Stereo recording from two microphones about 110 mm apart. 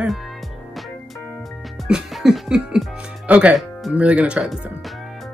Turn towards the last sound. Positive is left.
turn(degrees=-10)  # may be behind; listen again after turning